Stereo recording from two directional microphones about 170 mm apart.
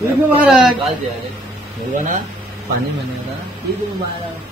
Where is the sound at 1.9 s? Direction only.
50° right (ahead or behind).